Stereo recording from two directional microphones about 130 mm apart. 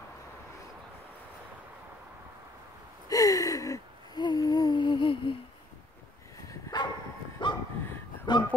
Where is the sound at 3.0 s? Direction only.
25° left (ahead or behind).